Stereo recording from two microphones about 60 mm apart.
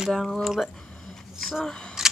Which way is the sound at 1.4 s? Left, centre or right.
Centre.